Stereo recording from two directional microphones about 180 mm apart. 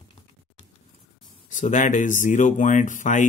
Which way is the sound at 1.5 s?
45° left (ahead or behind).